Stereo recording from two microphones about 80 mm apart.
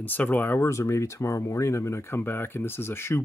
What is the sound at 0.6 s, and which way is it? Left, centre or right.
Speech, left.